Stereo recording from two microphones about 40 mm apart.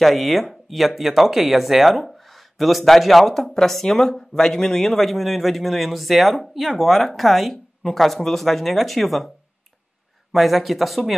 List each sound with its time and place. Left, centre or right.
0.0 s speech: centre
10.3 s speech: centre